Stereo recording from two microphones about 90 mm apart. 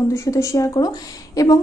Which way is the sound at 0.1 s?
35° left (ahead or behind).